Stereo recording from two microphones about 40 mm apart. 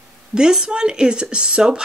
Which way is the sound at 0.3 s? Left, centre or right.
Centre.